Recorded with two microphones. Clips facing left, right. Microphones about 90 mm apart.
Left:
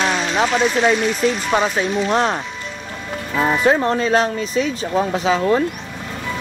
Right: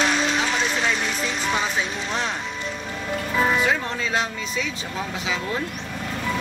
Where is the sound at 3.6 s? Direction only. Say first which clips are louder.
Left 8 dB; 40° left (ahead or behind).